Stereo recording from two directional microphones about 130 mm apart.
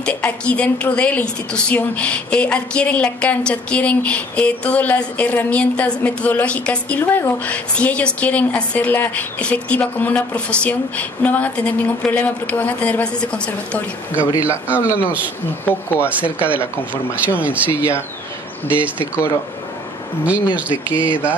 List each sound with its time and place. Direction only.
0.0 s a woman's voice: 10° left (ahead or behind)
16.1 s speech: 10° right (ahead or behind)
18.7 s speech: 10° right (ahead or behind)
20.2 s speech: 10° right (ahead or behind)